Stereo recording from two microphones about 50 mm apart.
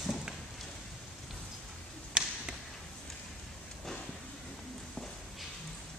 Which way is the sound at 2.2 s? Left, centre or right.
Centre.